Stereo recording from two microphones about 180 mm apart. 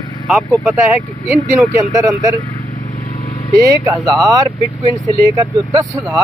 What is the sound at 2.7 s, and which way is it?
Vehicle, 45° left (ahead or behind).